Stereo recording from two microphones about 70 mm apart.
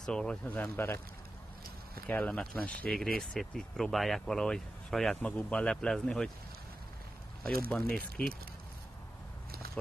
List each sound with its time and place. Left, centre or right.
0.0 s speech: centre
0.6 s speech: left
2.0 s speech: centre
2.9 s speech: centre
5.2 s speech: centre
7.4 s speech: centre